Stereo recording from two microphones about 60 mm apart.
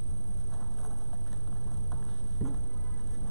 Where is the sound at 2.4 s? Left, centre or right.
Left.